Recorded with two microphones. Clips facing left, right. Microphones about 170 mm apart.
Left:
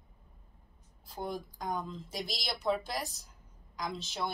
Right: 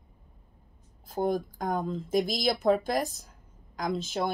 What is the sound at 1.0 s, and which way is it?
Speech, 50° right (ahead or behind).